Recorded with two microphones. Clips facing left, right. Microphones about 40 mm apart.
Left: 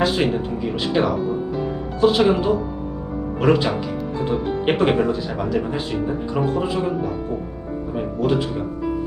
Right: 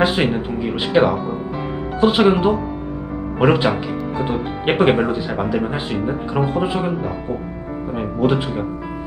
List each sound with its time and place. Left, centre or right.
0.0 s speech: right